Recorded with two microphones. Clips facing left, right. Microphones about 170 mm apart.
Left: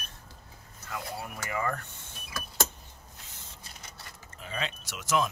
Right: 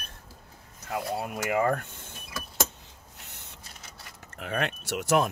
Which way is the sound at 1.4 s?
75° right (ahead or behind).